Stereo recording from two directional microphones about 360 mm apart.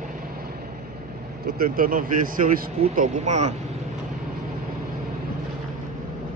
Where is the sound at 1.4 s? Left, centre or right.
Right.